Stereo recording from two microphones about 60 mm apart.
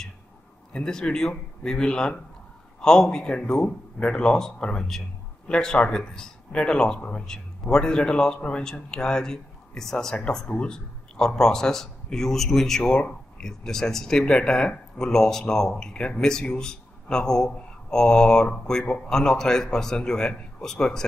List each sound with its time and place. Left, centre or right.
0.7 s speech: centre